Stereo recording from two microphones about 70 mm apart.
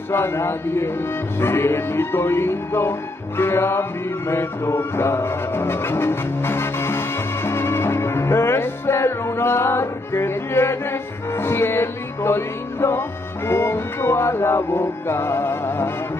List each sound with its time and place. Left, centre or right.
0.1 s speech: left
4.3 s music: left
13.5 s speech: left